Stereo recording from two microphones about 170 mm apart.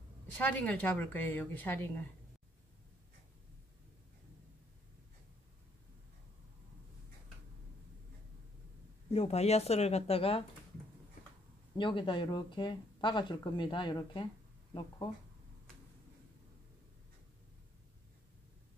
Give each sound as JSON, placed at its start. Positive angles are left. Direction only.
{"t": 0.4, "sound": "a woman's voice", "side_deg": 10}
{"t": 9.1, "sound": "speech", "side_deg": 40}
{"t": 11.7, "sound": "speech", "side_deg": 30}